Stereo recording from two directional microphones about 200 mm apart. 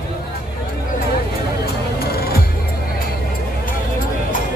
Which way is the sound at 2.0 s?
50° left (ahead or behind).